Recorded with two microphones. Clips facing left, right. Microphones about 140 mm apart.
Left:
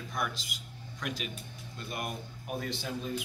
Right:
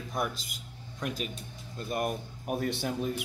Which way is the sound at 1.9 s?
45° right (ahead or behind).